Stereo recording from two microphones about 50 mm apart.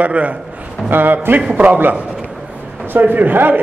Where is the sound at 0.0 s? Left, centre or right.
Right.